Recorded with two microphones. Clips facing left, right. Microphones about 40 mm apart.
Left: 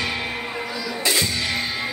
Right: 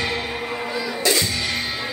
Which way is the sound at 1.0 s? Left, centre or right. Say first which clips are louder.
Right 1 dB; left.